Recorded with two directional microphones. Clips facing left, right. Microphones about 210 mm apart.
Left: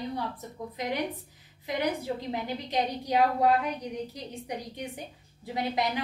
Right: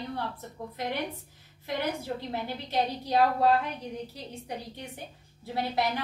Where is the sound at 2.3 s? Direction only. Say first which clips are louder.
Right 1 dB; 15° left (ahead or behind).